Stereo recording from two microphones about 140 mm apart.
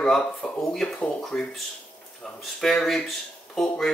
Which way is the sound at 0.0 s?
5° left (ahead or behind).